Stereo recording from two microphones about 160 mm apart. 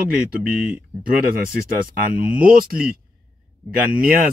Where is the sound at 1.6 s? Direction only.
60° right (ahead or behind).